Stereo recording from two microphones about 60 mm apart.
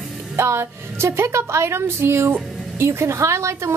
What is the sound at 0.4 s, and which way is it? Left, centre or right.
Speech, right.